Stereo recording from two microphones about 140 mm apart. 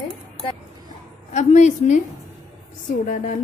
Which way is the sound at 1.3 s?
55° left (ahead or behind).